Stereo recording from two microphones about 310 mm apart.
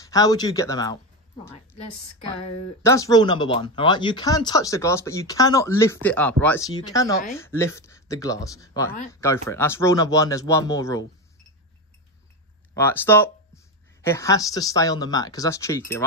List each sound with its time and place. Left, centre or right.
0.0 s a woman's voice: centre
2.8 s speech: centre
12.7 s speech: centre